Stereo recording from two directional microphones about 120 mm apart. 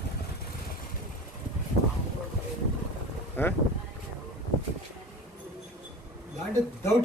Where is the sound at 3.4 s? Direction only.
15° left (ahead or behind).